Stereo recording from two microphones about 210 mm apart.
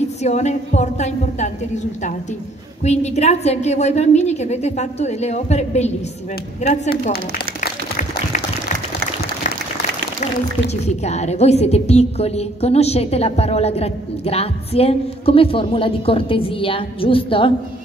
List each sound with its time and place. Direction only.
0.2 s a woman's voice: 30° left (ahead or behind)
2.8 s a woman's voice: 30° left (ahead or behind)
6.9 s speech: 50° left (ahead or behind)
10.9 s a woman's voice: 30° left (ahead or behind)